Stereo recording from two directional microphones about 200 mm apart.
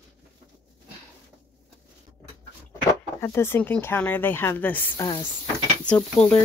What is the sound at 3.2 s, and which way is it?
Speech, 10° left (ahead or behind).